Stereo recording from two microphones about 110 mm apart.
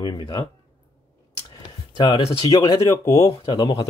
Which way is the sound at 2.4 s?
35° left (ahead or behind).